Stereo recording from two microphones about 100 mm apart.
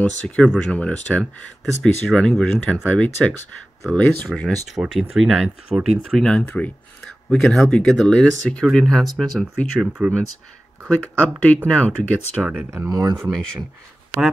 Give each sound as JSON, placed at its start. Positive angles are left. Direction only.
{"t": 0.2, "sound": "speech", "side_deg": 10}
{"t": 4.7, "sound": "speech", "side_deg": -5}
{"t": 5.7, "sound": "speech", "side_deg": -35}
{"t": 6.1, "sound": "speech", "side_deg": 10}
{"t": 9.8, "sound": "speech", "side_deg": -10}
{"t": 10.9, "sound": "speech", "side_deg": 15}
{"t": 12.4, "sound": "speech", "side_deg": -15}
{"t": 12.7, "sound": "speech", "side_deg": -35}